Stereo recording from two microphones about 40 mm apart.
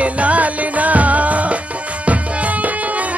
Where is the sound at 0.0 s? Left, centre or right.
Right.